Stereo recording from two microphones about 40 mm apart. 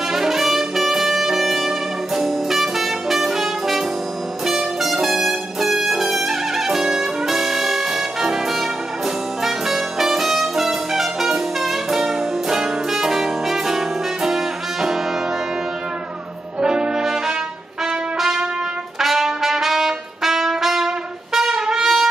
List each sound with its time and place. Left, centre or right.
0.1 s brass instrument: centre
2.2 s music: centre
4.5 s brass instrument: centre
9.4 s music: centre
16.6 s brass instrument: centre
17.0 s music: centre
18.9 s trumpet: centre